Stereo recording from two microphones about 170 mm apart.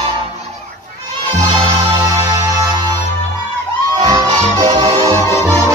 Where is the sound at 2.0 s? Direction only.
20° right (ahead or behind).